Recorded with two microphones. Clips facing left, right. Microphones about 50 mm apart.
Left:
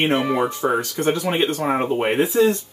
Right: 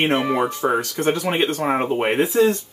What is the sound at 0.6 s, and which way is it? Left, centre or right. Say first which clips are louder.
Speech: even; right.